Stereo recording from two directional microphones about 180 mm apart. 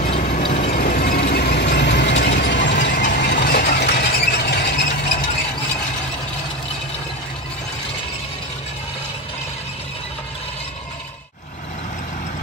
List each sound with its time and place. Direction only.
0.0 s a sound: 45° left (ahead or behind)
0.4 s ratchet: 40° left (ahead or behind); by 2.7 s 75° left (ahead or behind)
3.1 s squeal: 65° left (ahead or behind)